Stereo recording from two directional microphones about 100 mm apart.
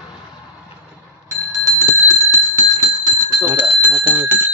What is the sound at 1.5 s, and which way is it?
Bell, 30° right (ahead or behind).